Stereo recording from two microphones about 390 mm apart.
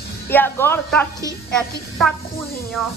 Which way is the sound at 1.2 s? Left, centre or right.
Centre.